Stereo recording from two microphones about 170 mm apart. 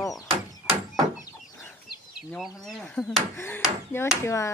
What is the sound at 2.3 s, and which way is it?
Speech, centre (ahead or behind).